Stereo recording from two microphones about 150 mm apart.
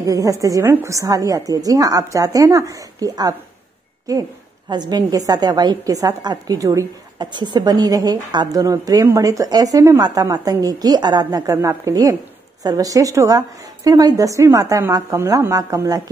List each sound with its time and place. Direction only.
0.0 s a woman's voice: 20° right (ahead or behind)